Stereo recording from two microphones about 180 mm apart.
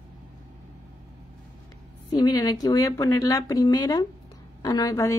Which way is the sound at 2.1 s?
20° left (ahead or behind).